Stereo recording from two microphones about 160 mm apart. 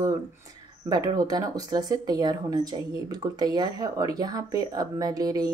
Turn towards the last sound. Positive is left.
turn(degrees=-25)  # may be behind; listen again after turning